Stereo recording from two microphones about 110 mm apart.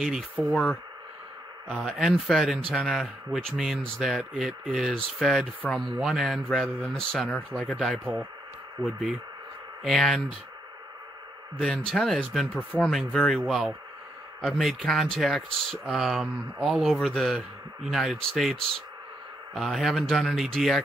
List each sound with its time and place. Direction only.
0.0 s speech: 5° right (ahead or behind)
0.5 s speech: 10° left (ahead or behind)
8.8 s speech: 15° left (ahead or behind)
9.8 s speech: 5° left (ahead or behind)
11.6 s speech: centre (ahead or behind)